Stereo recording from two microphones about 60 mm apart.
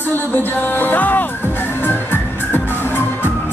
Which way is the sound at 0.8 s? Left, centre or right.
Left.